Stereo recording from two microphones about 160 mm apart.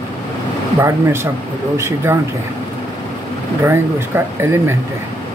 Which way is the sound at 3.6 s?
15° right (ahead or behind).